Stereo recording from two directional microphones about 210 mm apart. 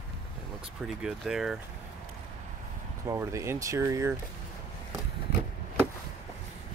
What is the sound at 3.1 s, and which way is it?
Speech, 15° right (ahead or behind).